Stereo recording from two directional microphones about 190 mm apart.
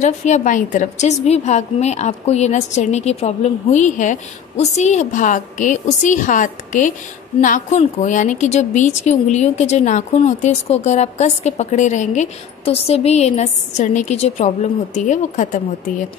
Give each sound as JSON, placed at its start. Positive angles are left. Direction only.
{"t": 0.0, "sound": "a woman's voice", "side_deg": 40}